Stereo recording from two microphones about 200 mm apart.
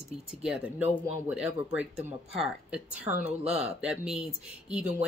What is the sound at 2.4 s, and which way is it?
Speech, 5° right (ahead or behind).